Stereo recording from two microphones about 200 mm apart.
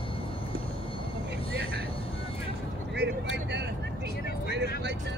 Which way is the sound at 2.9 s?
60° right (ahead or behind).